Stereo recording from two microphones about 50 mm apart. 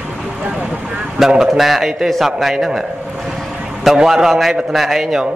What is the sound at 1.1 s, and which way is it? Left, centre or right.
A man's voice, centre.